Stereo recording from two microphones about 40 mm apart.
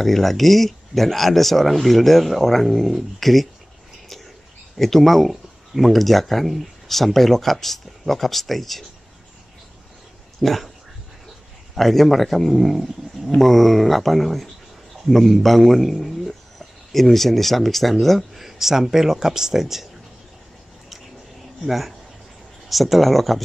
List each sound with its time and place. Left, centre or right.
0.0 s speech: centre
4.7 s speech: centre
10.4 s speech: centre
11.7 s a man's voice: centre
21.6 s speech: centre